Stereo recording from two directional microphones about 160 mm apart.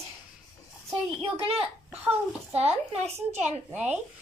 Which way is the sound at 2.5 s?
40° right (ahead or behind).